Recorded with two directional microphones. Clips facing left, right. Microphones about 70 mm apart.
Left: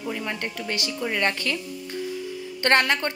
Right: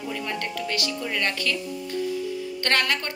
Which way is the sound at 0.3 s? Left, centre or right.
Left.